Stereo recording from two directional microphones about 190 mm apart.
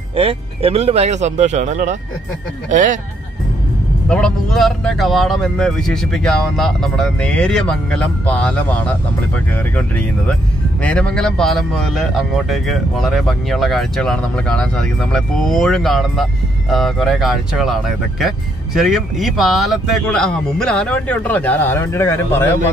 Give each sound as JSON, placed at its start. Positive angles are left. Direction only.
{"t": 0.1, "sound": "speech", "side_deg": -30}
{"t": 4.1, "sound": "speech", "side_deg": 5}